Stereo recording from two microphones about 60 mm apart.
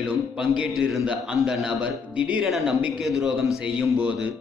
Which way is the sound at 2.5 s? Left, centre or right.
Centre.